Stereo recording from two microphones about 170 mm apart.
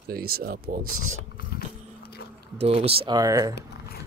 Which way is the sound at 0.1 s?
65° right (ahead or behind).